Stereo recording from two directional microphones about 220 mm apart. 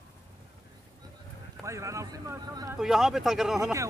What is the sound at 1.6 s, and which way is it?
Speech, 15° right (ahead or behind).